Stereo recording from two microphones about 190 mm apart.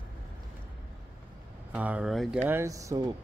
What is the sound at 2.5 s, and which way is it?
Speech, 15° right (ahead or behind).